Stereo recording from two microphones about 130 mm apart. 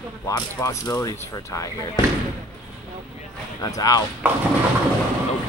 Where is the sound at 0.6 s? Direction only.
25° left (ahead or behind).